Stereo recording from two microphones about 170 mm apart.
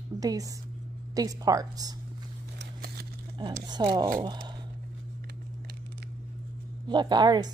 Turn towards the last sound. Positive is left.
turn(degrees=-25)  # may be behind; listen again after turning